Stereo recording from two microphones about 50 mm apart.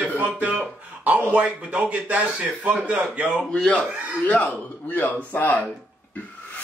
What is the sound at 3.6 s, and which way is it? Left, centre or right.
Speech, left.